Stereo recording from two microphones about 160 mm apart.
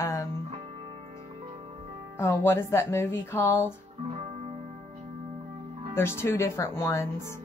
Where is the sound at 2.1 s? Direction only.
15° left (ahead or behind).